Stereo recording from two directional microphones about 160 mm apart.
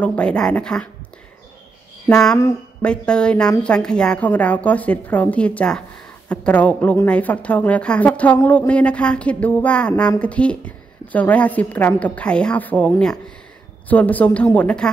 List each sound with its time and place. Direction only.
0.0 s a woman's voice: 10° left (ahead or behind)
2.0 s a woman's voice: 5° left (ahead or behind)